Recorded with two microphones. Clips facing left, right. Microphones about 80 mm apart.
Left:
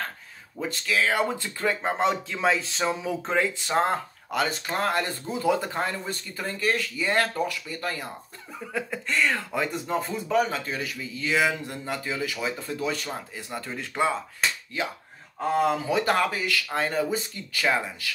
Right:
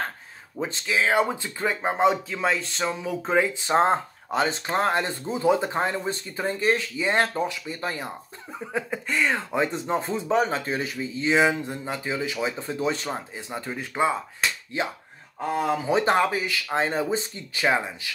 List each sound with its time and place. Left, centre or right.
0.8 s speech: centre
2.3 s speech: centre
3.3 s speech: centre
3.6 s speech: right
14.7 s speech: right